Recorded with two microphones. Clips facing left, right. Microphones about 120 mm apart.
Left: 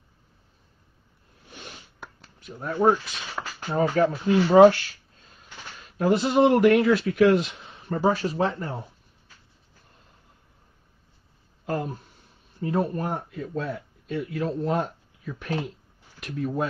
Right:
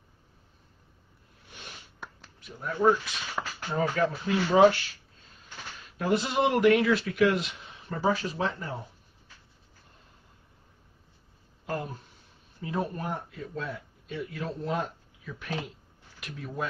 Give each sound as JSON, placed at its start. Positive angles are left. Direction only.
{"t": 1.5, "sound": "a sound", "side_deg": 40}
{"t": 2.4, "sound": "speech", "side_deg": 45}
{"t": 3.6, "sound": "speech", "side_deg": 30}
{"t": 4.6, "sound": "a sound", "side_deg": 45}
{"t": 5.8, "sound": "speech", "side_deg": 40}
{"t": 11.6, "sound": "speech", "side_deg": 45}